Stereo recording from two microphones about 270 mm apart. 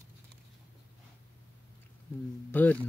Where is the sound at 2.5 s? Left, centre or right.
Centre.